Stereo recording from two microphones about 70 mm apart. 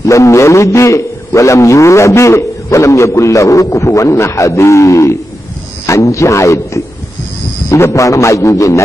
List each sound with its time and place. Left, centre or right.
0.0 s a man's voice: left